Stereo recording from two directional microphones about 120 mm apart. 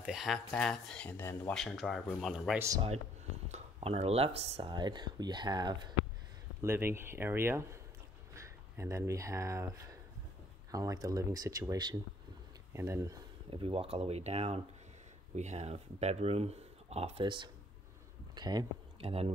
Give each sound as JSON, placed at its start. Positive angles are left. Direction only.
{"t": 0.0, "sound": "speech", "side_deg": -5}
{"t": 1.1, "sound": "speech", "side_deg": 20}
{"t": 1.5, "sound": "speech", "side_deg": 0}
{"t": 3.5, "sound": "speech", "side_deg": -60}
{"t": 4.7, "sound": "speech", "side_deg": -40}
{"t": 6.6, "sound": "speech", "side_deg": -20}
{"t": 12.7, "sound": "speech", "side_deg": -25}
{"t": 13.5, "sound": "speech", "side_deg": -50}
{"t": 17.2, "sound": "speech", "side_deg": -40}
{"t": 18.9, "sound": "speech", "side_deg": -50}